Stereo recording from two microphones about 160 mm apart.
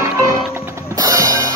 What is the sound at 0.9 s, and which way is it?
Music, 20° right (ahead or behind).